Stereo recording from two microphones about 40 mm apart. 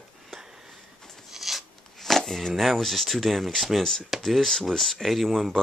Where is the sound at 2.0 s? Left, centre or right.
Centre.